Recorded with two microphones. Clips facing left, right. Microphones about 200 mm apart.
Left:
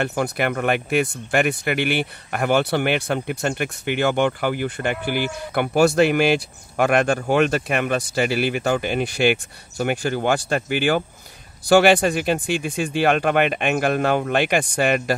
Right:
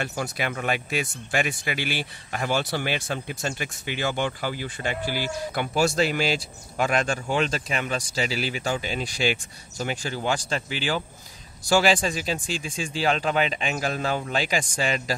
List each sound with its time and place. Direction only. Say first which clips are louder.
0.0 s speech: left 7 dB; 60° left (ahead or behind)